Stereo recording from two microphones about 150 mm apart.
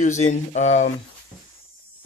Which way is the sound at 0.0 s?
50° left (ahead or behind).